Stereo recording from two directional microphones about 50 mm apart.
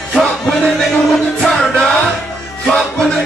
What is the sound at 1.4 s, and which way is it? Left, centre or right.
Music, centre.